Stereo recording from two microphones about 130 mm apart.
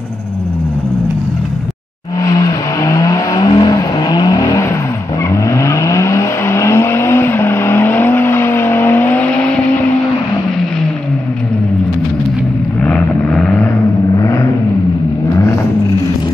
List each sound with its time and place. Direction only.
2.2 s vehicle: 25° left (ahead or behind); by 9.8 s 10° left (ahead or behind)
12.8 s vehicle: 10° left (ahead or behind)
14.1 s vehicle: 25° left (ahead or behind)